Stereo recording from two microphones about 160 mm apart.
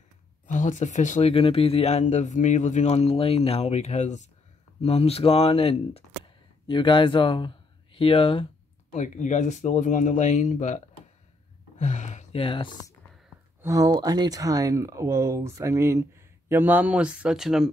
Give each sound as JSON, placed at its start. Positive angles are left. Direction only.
{"t": 0.5, "sound": "speech", "side_deg": 50}
{"t": 1.3, "sound": "speech", "side_deg": 35}
{"t": 8.9, "sound": "speech", "side_deg": 50}
{"t": 11.8, "sound": "a sound", "side_deg": 50}
{"t": 13.6, "sound": "speech", "side_deg": -20}